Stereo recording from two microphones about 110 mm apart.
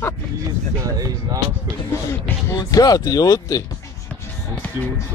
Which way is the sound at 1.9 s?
20° left (ahead or behind).